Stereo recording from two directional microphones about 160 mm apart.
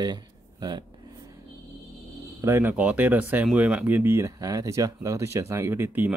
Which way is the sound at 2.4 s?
15° right (ahead or behind).